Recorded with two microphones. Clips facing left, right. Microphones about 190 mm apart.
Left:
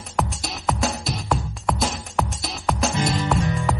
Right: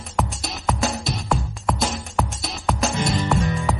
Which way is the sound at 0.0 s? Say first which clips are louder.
Even; centre (ahead or behind).